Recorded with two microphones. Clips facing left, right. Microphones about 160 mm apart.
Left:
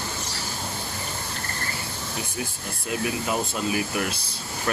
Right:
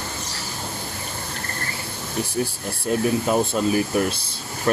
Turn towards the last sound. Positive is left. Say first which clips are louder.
# right 6 dB
turn(degrees=-35)  # may be behind; listen again after turning